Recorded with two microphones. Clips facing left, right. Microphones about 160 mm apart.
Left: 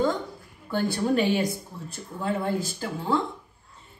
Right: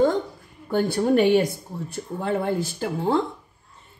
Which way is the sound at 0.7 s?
50° right (ahead or behind).